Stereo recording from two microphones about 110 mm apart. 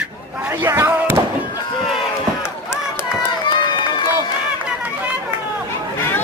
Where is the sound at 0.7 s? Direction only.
25° right (ahead or behind).